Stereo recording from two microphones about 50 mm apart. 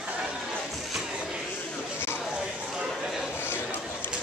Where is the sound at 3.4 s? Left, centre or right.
Left.